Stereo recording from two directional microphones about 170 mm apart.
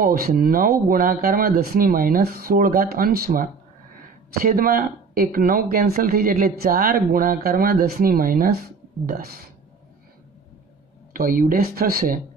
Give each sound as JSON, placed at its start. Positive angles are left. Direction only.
{"t": 0.0, "sound": "speech", "side_deg": -60}
{"t": 11.1, "sound": "speech", "side_deg": -55}